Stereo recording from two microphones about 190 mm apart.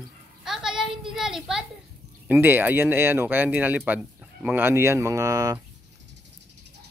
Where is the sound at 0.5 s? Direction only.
Centre (ahead or behind).